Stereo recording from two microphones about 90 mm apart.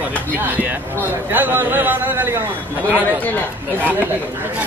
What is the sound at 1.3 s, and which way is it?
A man's voice, 25° right (ahead or behind).